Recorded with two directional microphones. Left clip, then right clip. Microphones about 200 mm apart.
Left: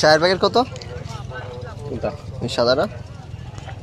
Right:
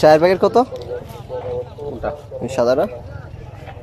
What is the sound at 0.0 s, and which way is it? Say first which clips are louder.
Speech: right 3 dB; 15° right (ahead or behind).